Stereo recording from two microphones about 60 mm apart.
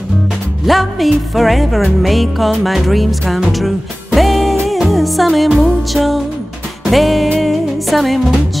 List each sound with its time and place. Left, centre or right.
0.7 s music: centre